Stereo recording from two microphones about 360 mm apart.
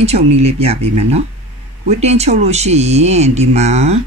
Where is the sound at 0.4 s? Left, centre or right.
Centre.